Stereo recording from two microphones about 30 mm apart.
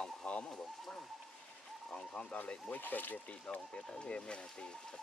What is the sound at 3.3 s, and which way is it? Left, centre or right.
Speech, left.